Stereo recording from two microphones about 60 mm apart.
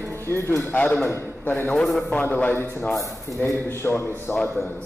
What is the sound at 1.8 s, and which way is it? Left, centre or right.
Speech, centre.